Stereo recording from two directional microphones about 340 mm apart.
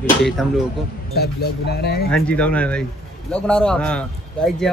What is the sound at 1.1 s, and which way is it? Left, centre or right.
Speech, left.